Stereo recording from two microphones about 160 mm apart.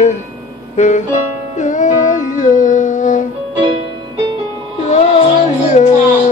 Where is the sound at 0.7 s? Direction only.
50° left (ahead or behind).